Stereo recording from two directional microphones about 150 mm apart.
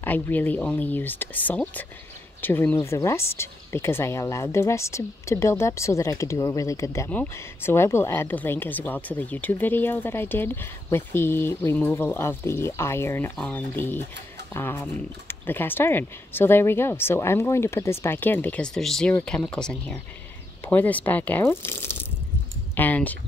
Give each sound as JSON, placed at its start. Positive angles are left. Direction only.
{"t": 0.0, "sound": "speech", "side_deg": 10}